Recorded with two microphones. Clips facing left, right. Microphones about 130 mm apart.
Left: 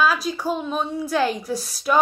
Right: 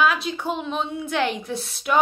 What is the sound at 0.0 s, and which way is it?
A woman's voice, 35° left (ahead or behind).